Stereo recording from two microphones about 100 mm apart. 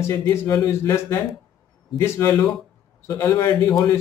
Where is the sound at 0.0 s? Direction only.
25° left (ahead or behind).